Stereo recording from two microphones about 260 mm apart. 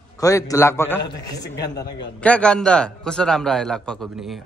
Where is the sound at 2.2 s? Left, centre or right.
Centre.